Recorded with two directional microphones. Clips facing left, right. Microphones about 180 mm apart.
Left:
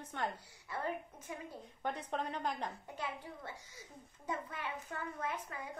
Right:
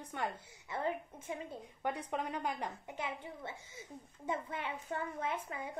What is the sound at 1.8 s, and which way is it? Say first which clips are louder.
Speech: right 1 dB; 10° right (ahead or behind).